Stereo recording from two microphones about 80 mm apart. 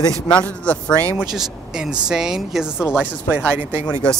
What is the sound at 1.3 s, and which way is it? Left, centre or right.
Speech, centre.